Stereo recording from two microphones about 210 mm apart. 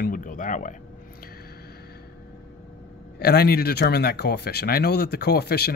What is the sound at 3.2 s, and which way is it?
Speech, 50° left (ahead or behind).